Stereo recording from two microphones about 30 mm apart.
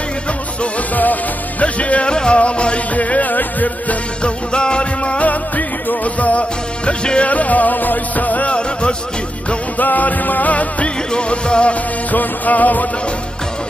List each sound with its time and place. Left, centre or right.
1.6 s speech: left
2.0 s music: left
2.9 s music: left
4.2 s music: left
5.2 s music: left
6.9 s music: left
7.2 s music: left
8.5 s music: left
9.8 s music: left
10.5 s music: left
11.1 s music: left
12.1 s music: left